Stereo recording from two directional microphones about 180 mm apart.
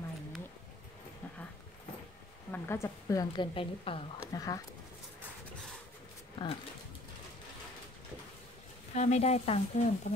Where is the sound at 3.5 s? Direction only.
30° left (ahead or behind).